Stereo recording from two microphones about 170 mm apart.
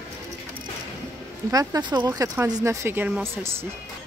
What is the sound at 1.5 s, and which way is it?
Speech, 25° right (ahead or behind).